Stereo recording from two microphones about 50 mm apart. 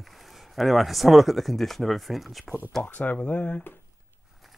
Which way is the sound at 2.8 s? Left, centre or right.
Left.